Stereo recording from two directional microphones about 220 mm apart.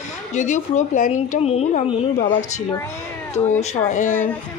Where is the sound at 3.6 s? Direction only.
35° left (ahead or behind).